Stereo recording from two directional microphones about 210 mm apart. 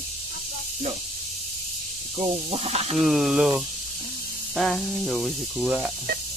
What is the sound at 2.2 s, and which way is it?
Speech, 30° right (ahead or behind).